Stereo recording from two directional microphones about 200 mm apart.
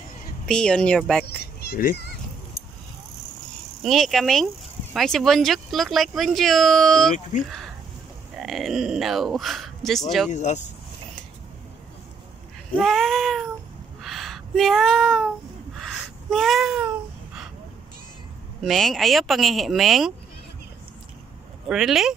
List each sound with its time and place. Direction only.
0.5 s speech: 5° left (ahead or behind)
1.2 s speech: 55° left (ahead or behind)
3.8 s speech: centre (ahead or behind)
8.4 s speech: centre (ahead or behind)
10.3 s speech: 35° left (ahead or behind)
12.7 s speech: centre (ahead or behind)
14.0 s a sound: centre (ahead or behind)
18.6 s speech: centre (ahead or behind)
21.6 s speech: centre (ahead or behind)